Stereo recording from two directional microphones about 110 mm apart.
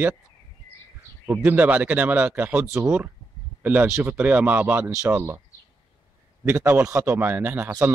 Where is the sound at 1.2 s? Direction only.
15° right (ahead or behind).